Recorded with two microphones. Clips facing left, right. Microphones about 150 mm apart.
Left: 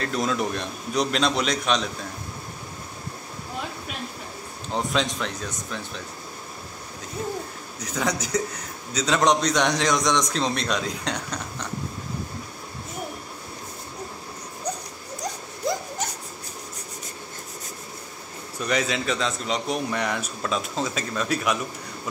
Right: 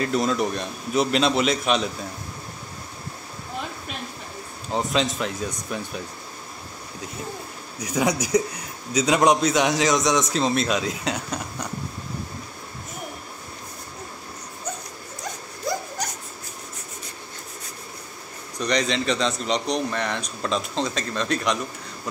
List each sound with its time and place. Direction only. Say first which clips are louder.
0.0 s a man's voice: right 3 dB; centre (ahead or behind)
4.7 s a man's voice: right 2 dB; centre (ahead or behind)
7.8 s a man's voice: right 4 dB; 10° right (ahead or behind)
15.7 s dog: left 1 dB; 20° left (ahead or behind)
18.6 s a man's voice: right 2 dB; 5° left (ahead or behind)